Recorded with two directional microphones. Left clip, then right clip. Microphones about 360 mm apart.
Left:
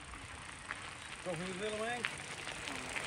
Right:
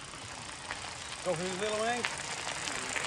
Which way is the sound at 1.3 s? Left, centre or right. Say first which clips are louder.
Right 7 dB; centre.